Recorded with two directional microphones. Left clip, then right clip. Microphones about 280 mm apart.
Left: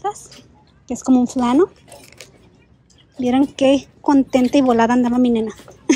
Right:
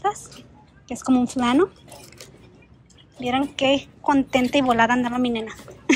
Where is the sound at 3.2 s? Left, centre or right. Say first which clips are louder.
Left 5 dB; left.